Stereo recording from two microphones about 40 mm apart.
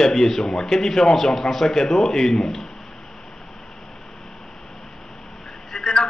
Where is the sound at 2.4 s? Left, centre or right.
Centre.